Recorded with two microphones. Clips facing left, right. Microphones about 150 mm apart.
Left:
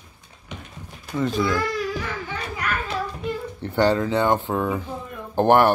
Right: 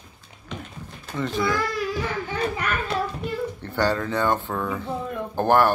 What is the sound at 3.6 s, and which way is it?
Speech, 15° left (ahead or behind).